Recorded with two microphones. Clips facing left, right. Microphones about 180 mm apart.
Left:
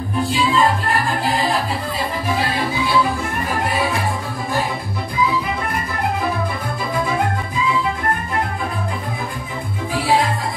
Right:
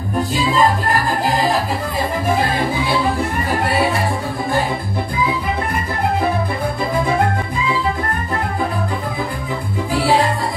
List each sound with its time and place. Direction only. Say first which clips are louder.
0.3 s music: right 1 dB; 40° right (ahead or behind)
2.2 s music: right 3 dB; 50° right (ahead or behind)